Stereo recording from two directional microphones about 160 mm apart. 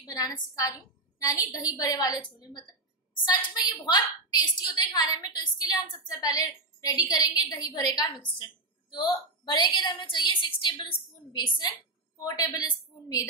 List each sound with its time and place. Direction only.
0.0 s a woman's voice: 25° left (ahead or behind)